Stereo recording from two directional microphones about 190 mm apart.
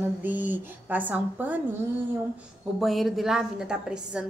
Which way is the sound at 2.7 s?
Centre (ahead or behind).